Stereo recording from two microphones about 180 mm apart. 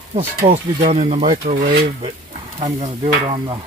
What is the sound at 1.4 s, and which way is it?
Speech, 60° right (ahead or behind).